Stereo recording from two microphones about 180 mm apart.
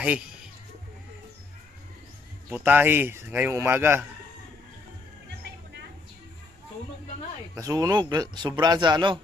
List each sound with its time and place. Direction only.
2.5 s speech: 10° right (ahead or behind)
7.5 s speech: 20° right (ahead or behind)